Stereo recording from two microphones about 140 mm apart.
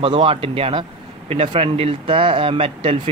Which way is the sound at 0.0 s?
40° right (ahead or behind).